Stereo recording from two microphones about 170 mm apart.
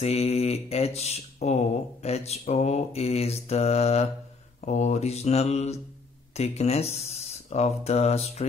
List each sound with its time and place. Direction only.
0.0 s speech: 40° left (ahead or behind)